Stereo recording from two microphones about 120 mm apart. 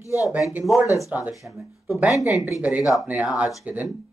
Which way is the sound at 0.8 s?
25° left (ahead or behind).